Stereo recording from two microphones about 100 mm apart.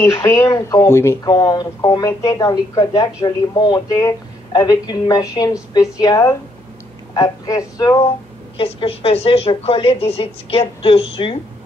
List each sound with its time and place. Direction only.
0.0 s speech: 30° left (ahead or behind)
1.2 s a woman's voice: 45° left (ahead or behind)
8.5 s a woman's voice: 65° left (ahead or behind)